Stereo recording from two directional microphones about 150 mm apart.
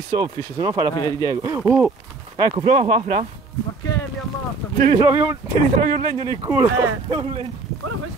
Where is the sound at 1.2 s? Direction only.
25° right (ahead or behind).